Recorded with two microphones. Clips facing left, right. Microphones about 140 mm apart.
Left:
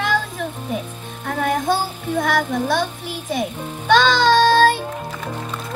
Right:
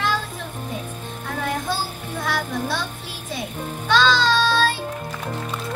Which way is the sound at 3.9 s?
55° left (ahead or behind).